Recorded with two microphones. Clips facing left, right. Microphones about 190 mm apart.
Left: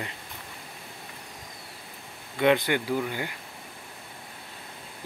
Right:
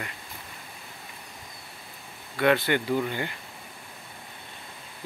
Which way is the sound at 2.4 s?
15° left (ahead or behind).